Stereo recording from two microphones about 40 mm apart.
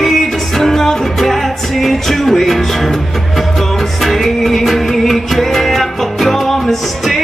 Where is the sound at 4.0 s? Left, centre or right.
Centre.